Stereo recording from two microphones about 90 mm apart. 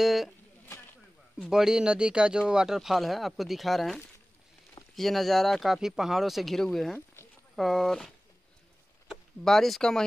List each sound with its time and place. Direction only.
0.0 s speech: centre (ahead or behind)
0.7 s chopping: 25° left (ahead or behind)
1.4 s speech: 5° right (ahead or behind)